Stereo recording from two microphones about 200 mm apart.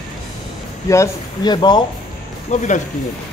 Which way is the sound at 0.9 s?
20° left (ahead or behind).